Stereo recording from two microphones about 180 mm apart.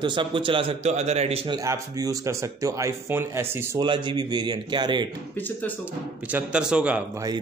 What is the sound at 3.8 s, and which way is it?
A man's voice, 25° right (ahead or behind).